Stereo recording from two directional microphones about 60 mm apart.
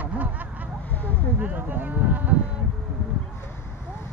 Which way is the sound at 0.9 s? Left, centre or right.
Left.